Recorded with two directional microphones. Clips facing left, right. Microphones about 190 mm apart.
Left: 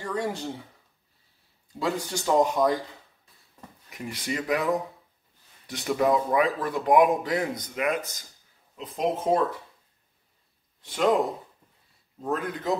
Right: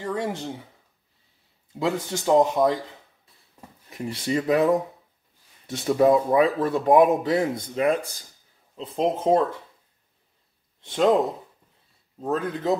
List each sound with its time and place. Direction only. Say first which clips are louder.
0.0 s a man's voice: right 2 dB; 20° right (ahead or behind)
1.7 s a man's voice: right 3 dB; 20° right (ahead or behind)
3.9 s a man's voice: right 6 dB; 30° right (ahead or behind)
10.8 s speech: right 4 dB; 25° right (ahead or behind)
12.2 s a man's voice: right 3 dB; 25° right (ahead or behind)